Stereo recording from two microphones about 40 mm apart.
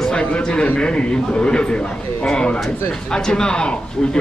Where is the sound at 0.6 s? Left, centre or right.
Left.